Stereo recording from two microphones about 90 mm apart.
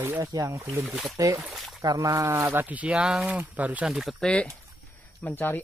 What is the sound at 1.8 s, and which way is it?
Speech, 40° right (ahead or behind).